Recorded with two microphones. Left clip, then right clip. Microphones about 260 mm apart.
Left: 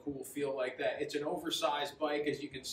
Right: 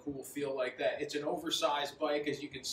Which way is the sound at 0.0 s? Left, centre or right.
Centre.